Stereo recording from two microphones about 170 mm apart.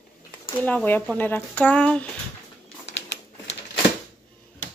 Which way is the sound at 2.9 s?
90° left.